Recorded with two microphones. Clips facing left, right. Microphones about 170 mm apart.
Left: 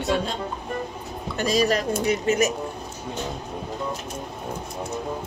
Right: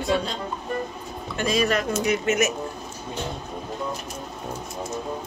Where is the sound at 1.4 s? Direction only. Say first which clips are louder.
Left 1 dB; 40° left (ahead or behind).